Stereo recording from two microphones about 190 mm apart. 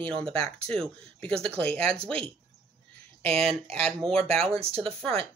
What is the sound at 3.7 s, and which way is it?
Speech, 5° left (ahead or behind).